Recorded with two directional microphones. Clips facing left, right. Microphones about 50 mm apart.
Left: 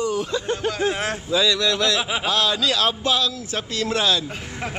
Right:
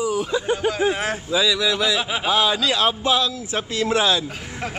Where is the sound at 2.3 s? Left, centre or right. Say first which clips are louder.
Right 3 dB; centre.